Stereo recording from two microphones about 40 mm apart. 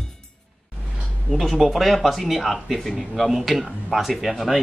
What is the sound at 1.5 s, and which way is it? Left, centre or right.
Speech, centre.